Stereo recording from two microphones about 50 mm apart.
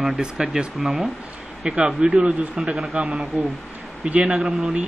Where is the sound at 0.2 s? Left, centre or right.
Centre.